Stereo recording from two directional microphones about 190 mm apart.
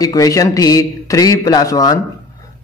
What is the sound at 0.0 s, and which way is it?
A man's voice, 20° left (ahead or behind).